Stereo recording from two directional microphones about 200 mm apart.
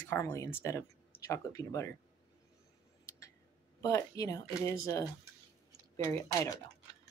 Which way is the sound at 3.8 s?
15° left (ahead or behind).